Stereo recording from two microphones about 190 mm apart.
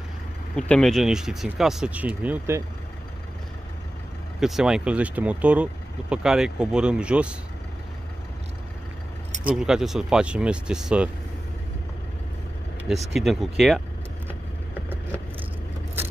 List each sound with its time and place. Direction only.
0.6 s speech: 5° left (ahead or behind)
4.4 s speech: centre (ahead or behind)
9.5 s speech: 5° right (ahead or behind)
12.8 s speech: centre (ahead or behind)